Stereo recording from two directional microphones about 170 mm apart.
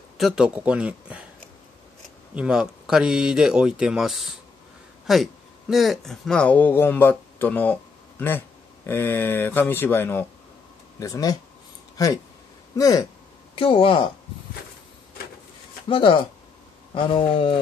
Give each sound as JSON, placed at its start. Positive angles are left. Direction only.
{"t": 0.2, "sound": "speech", "side_deg": -5}
{"t": 2.3, "sound": "speech", "side_deg": -5}
{"t": 12.7, "sound": "speech", "side_deg": 20}
{"t": 13.6, "sound": "speech", "side_deg": 30}
{"t": 15.9, "sound": "speech", "side_deg": 30}